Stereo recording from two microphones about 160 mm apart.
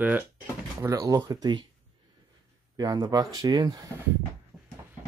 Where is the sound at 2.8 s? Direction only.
25° right (ahead or behind).